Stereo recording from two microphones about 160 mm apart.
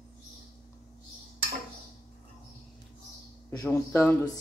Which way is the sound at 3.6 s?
15° left (ahead or behind).